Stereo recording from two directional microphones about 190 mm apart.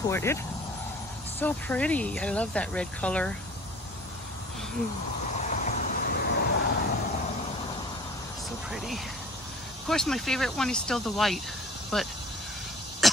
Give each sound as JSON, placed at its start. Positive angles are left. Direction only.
{"t": 0.0, "sound": "speech", "side_deg": 15}
{"t": 1.4, "sound": "speech", "side_deg": 10}
{"t": 5.3, "sound": "vehicle", "side_deg": 40}
{"t": 8.6, "sound": "speech", "side_deg": 0}
{"t": 13.0, "sound": "beatboxing", "side_deg": 0}